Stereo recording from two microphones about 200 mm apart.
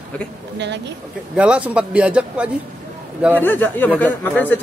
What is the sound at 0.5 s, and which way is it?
Speech, 60° right (ahead or behind).